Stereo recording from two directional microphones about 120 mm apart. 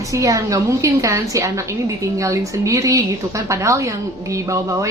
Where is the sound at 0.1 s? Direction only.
25° right (ahead or behind).